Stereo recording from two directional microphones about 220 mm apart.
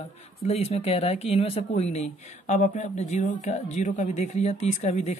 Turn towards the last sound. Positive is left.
turn(degrees=30)  # may be behind; listen again after turning